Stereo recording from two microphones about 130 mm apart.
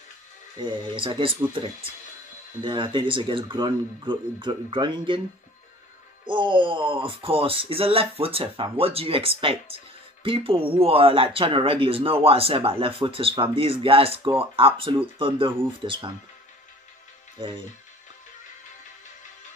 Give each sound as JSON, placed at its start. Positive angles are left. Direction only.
{"t": 0.6, "sound": "speech", "side_deg": -40}
{"t": 2.6, "sound": "speech", "side_deg": -40}
{"t": 6.2, "sound": "speech", "side_deg": -40}